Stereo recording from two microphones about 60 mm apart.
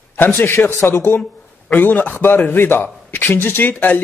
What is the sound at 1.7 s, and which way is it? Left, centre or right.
Speech, left.